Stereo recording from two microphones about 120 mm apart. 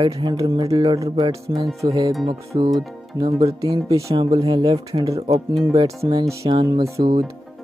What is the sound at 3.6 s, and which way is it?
Speech, 35° right (ahead or behind).